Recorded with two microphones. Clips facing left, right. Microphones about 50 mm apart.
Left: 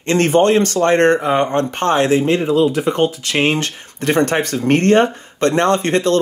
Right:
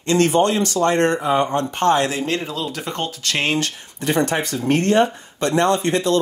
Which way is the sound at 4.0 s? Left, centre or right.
Left.